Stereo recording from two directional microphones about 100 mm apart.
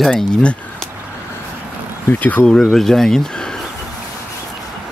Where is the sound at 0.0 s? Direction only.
10° left (ahead or behind).